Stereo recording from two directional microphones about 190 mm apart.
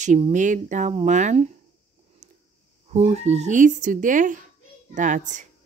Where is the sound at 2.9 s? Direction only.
35° right (ahead or behind).